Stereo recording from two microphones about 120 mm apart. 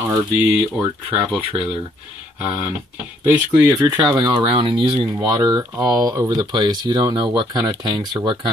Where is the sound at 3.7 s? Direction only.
35° right (ahead or behind).